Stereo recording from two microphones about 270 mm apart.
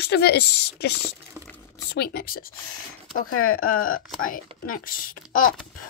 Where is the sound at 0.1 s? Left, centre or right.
Left.